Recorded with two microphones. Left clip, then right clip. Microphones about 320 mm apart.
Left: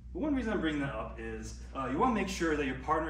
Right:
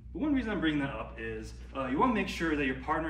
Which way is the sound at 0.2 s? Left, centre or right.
Centre.